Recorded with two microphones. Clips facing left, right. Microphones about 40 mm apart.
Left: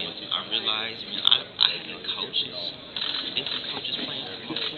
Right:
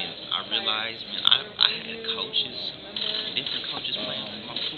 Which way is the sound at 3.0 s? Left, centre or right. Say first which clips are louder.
Right 1 dB; left.